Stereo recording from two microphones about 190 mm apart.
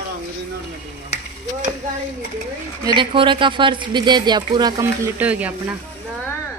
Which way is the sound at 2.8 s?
25° right (ahead or behind).